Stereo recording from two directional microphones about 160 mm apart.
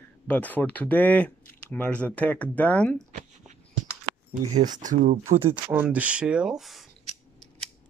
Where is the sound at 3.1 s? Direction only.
50° right (ahead or behind).